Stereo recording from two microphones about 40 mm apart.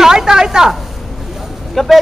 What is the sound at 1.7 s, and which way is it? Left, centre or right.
Speech, centre.